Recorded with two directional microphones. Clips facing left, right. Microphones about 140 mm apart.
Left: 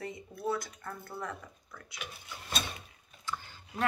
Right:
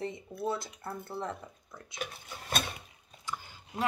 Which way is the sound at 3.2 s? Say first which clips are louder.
Even; 15° right (ahead or behind).